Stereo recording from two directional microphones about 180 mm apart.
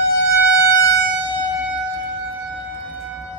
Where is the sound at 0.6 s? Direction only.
20° left (ahead or behind).